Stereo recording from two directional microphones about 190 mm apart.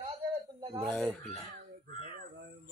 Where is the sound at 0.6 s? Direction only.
20° right (ahead or behind).